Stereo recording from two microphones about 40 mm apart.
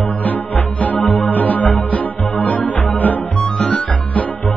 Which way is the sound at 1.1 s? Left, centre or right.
Left.